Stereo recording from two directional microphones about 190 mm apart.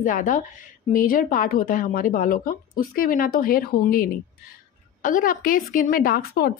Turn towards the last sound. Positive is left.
turn(degrees=50)  # may be behind; listen again after turning